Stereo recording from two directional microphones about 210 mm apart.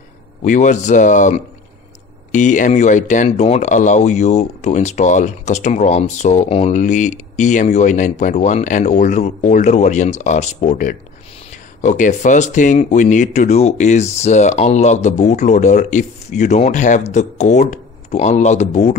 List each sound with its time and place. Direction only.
0.4 s speech: 35° left (ahead or behind)